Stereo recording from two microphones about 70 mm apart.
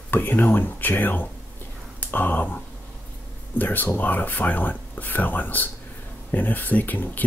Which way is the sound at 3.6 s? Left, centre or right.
Left.